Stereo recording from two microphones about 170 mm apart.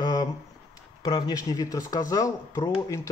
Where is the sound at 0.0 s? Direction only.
25° left (ahead or behind).